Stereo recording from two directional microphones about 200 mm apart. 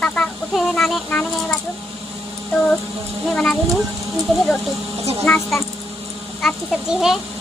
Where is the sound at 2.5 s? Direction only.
Centre (ahead or behind).